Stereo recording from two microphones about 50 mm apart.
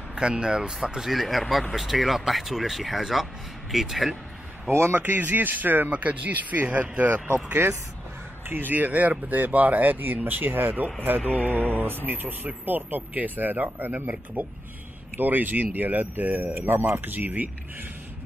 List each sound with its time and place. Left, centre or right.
0.1 s speech: centre
4.6 s a man's voice: right
4.9 s speech: right
7.6 s a man's voice: right
8.5 s speech: right
16.6 s speech: right